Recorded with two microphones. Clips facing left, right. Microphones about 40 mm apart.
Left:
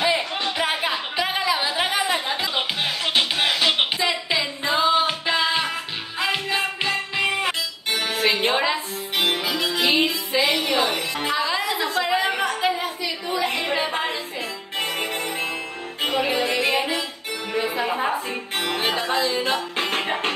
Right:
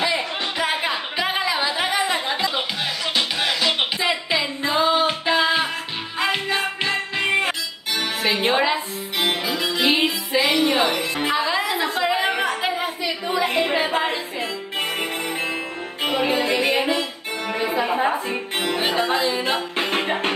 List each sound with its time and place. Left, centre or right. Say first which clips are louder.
0.0 s music: left 1 dB; centre
0.8 s a sound: right 1 dB; centre
2.5 s music: even; left
4.0 s a sound: right 1 dB; centre
4.6 s music: even; centre; by 7.5 s right
7.9 s music: even; centre
9.8 s music: right 1 dB; centre
10.3 s music: right 2 dB; centre
10.6 s music: right 3 dB; centre
11.7 s a sound: right 1 dB; centre
16.0 s music: right 1 dB; centre